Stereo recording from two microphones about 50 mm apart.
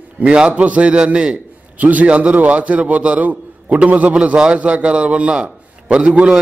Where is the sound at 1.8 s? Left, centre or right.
Right.